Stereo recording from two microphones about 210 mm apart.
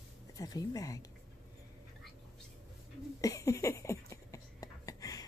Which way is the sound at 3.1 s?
15° left (ahead or behind).